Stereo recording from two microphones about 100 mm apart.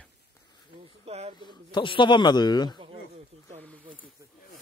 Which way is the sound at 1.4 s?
50° left (ahead or behind).